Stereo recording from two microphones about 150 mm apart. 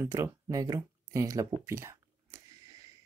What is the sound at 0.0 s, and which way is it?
Speech, 20° right (ahead or behind).